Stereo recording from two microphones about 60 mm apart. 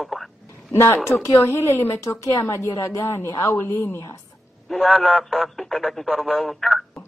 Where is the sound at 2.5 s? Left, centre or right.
Left.